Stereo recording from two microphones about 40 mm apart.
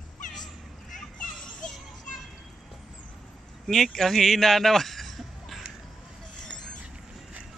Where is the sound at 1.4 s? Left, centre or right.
Left.